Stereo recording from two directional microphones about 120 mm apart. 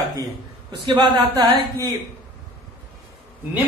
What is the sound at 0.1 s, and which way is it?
Speech, 35° right (ahead or behind).